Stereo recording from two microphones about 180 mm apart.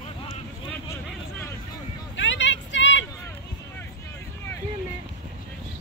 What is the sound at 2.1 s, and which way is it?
Vehicle, 90° left.